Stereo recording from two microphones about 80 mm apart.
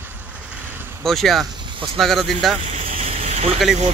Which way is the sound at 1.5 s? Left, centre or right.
Right.